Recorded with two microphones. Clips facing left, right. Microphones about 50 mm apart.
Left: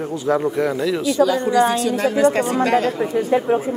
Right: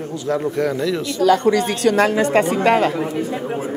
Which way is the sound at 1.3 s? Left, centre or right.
Right.